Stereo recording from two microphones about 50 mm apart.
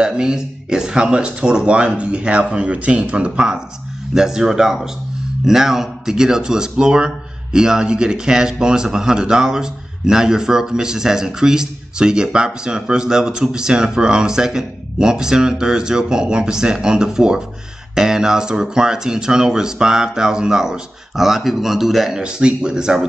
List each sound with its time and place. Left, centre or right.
0.0 s speech: centre
22.2 s speech: centre